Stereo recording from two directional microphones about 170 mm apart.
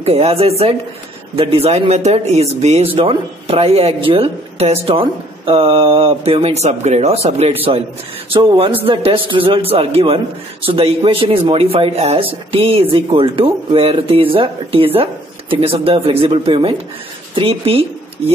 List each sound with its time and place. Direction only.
0.0 s speech: 35° right (ahead or behind)
8.5 s speech: 30° right (ahead or behind)